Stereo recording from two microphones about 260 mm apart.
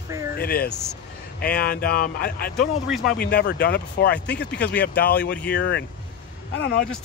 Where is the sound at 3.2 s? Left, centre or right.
Left.